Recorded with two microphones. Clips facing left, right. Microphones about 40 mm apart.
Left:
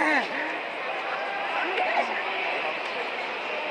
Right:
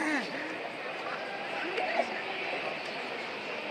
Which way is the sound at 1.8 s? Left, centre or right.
Left.